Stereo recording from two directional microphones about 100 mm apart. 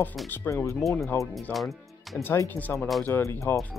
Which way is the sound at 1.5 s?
Centre (ahead or behind).